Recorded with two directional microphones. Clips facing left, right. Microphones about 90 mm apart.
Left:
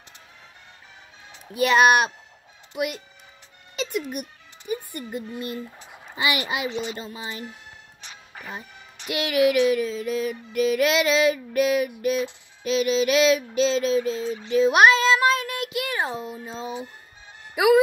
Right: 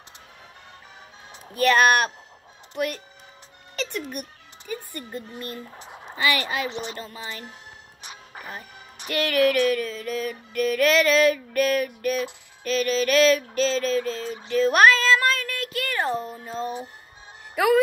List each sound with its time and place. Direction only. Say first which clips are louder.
1.5 s music: left 1 dB; 15° left (ahead or behind)
2.7 s speech: even; 10° left (ahead or behind)
4.6 s music: left 4 dB; 15° left (ahead or behind)
5.8 s a sound: right 3 dB; 20° right (ahead or behind)
6.1 s music: right 1 dB; 15° left (ahead or behind)
8.0 s music: right 2 dB; 10° right (ahead or behind)
9.1 s music: left 1 dB; 10° left (ahead or behind)
14.5 s speech: left 1 dB; 10° left (ahead or behind)